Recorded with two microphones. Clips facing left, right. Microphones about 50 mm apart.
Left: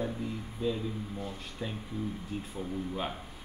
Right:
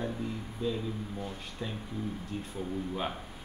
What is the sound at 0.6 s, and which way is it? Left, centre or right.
Speech, centre.